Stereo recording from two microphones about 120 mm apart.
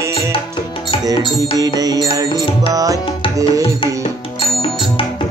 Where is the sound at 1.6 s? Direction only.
30° right (ahead or behind).